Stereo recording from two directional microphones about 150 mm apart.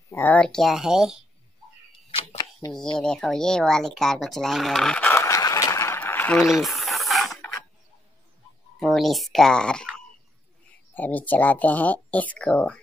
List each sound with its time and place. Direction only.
0.1 s speech: 10° left (ahead or behind)
2.0 s a sound: 35° left (ahead or behind)
2.7 s speech: 5° left (ahead or behind)
6.4 s mechanisms: centre (ahead or behind)
8.7 s speech: centre (ahead or behind)
11.0 s speech: 10° left (ahead or behind)